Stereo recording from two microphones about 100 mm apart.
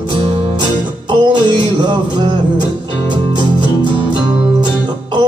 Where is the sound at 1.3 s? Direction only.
50° right (ahead or behind).